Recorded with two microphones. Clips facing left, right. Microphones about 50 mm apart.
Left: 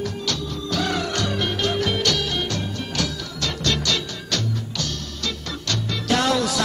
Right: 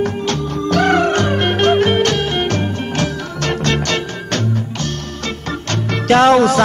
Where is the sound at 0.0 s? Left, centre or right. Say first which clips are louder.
Right 8 dB; right.